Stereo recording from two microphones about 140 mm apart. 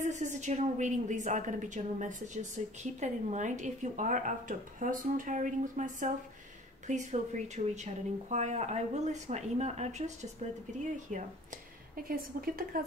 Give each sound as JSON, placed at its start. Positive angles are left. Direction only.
{"t": 0.0, "sound": "a woman's voice", "side_deg": -60}
{"t": 12.0, "sound": "a woman's voice", "side_deg": -90}